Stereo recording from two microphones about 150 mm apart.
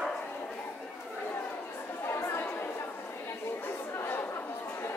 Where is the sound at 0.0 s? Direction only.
5° left (ahead or behind).